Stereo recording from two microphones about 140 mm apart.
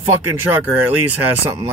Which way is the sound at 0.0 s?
15° right (ahead or behind).